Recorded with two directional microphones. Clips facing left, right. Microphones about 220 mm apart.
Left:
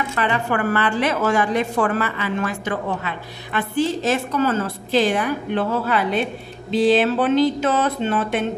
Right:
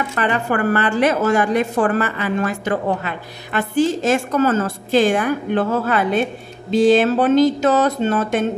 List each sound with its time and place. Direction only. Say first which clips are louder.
0.2 s a woman's voice: right 2 dB; 45° right (ahead or behind)